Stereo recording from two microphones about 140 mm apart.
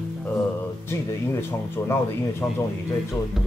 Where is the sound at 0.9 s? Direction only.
15° left (ahead or behind).